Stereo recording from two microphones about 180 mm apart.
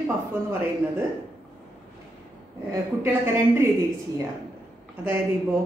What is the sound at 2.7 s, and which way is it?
A woman's voice, 15° right (ahead or behind).